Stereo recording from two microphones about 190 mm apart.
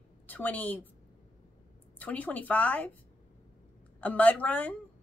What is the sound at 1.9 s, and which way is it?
Speech, 10° left (ahead or behind).